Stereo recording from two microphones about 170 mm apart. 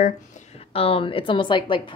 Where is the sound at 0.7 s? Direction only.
35° left (ahead or behind).